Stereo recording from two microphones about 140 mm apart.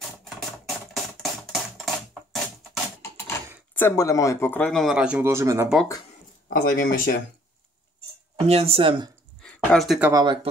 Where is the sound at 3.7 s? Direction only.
15° left (ahead or behind).